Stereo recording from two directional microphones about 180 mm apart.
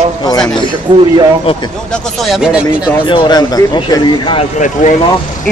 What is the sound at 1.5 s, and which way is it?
Speech, 30° left (ahead or behind).